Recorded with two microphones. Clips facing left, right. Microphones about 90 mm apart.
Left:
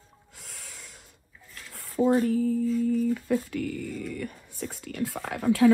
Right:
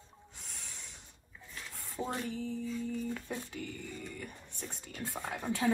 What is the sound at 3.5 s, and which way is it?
Speech, 60° left (ahead or behind).